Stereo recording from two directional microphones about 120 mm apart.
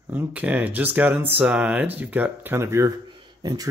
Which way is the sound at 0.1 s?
15° right (ahead or behind).